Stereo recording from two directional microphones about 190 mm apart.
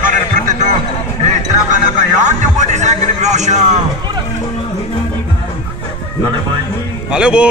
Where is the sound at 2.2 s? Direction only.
40° right (ahead or behind).